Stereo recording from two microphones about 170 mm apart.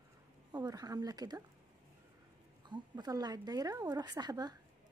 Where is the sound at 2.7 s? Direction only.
25° right (ahead or behind).